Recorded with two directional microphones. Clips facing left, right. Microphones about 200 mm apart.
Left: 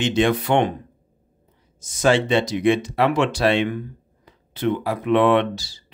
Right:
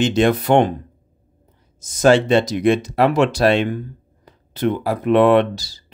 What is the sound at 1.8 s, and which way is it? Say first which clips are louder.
Speech: right 5 dB; 40° right (ahead or behind).